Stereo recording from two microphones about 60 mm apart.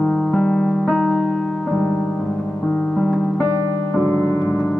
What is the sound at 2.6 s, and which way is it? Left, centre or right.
Music, centre.